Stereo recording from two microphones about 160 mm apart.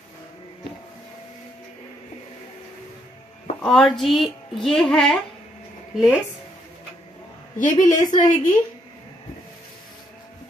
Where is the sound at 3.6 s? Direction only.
Centre (ahead or behind).